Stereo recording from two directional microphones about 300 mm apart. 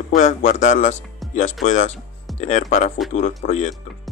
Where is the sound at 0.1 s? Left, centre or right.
Left.